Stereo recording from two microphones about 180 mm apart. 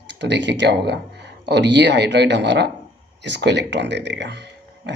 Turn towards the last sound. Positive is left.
turn(degrees=-70)  # may be behind; listen again after turning